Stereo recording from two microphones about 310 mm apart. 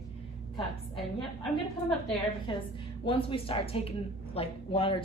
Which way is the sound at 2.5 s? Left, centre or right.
Centre.